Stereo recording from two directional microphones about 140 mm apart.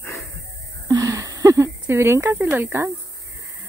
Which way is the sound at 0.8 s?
25° right (ahead or behind).